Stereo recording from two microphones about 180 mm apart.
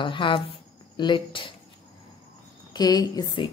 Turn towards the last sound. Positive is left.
turn(degrees=25)  # may be behind; listen again after turning